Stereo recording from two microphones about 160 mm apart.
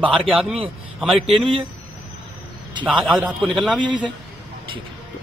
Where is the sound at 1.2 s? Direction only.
35° right (ahead or behind).